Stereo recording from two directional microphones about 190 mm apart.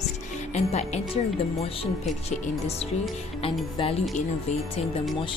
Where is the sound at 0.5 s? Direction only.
35° left (ahead or behind).